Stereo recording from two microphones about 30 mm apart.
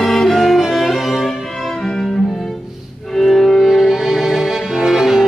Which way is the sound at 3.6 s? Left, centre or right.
Centre.